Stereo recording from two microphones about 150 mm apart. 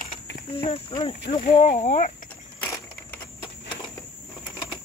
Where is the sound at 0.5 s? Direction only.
40° left (ahead or behind).